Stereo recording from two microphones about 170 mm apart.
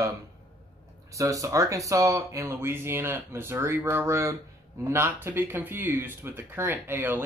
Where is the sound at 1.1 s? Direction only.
20° right (ahead or behind).